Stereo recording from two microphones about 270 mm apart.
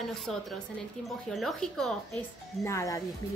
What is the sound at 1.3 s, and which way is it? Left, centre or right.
A woman's voice, centre.